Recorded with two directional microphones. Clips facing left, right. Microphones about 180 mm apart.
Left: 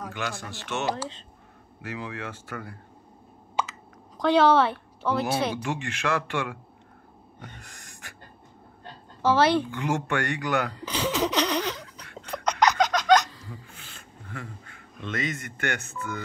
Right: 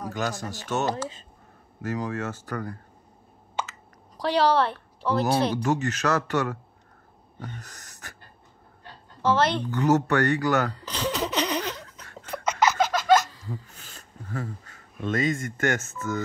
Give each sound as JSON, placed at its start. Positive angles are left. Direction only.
{"t": 0.1, "sound": "speech", "side_deg": -40}
{"t": 4.2, "sound": "a woman's voice", "side_deg": 0}
{"t": 5.2, "sound": "speech", "side_deg": -40}
{"t": 7.3, "sound": "gasp", "side_deg": -40}
{"t": 9.2, "sound": "speech", "side_deg": 5}
{"t": 9.7, "sound": "speech", "side_deg": -40}
{"t": 10.9, "sound": "giggle", "side_deg": 5}
{"t": 12.0, "sound": "a sound", "side_deg": -45}
{"t": 12.3, "sound": "a sound", "side_deg": -5}
{"t": 13.5, "sound": "a sound", "side_deg": -40}